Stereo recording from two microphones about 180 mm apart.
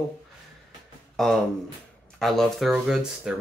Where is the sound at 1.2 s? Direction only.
Centre (ahead or behind).